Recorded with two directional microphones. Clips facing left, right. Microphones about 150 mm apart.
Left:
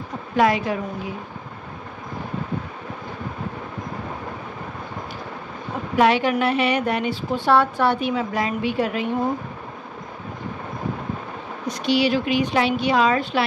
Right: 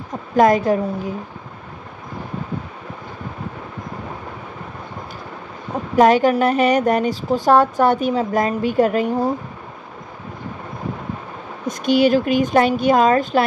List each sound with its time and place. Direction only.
0.1 s a woman's voice: 45° right (ahead or behind)
5.9 s speech: 45° right (ahead or behind)
11.6 s speech: 50° right (ahead or behind)